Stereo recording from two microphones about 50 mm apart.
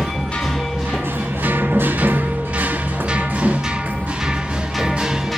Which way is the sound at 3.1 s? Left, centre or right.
Right.